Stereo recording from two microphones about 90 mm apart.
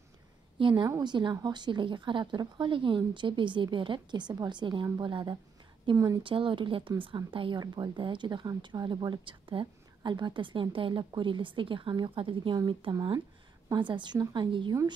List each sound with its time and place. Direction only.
0.6 s a woman's voice: 65° right (ahead or behind)
0.8 s a woman's voice: 50° right (ahead or behind)
5.9 s speech: 70° right (ahead or behind)
7.6 s a woman's voice: 50° right (ahead or behind); by 13.0 s 75° right (ahead or behind)
13.7 s a woman's voice: 60° right (ahead or behind)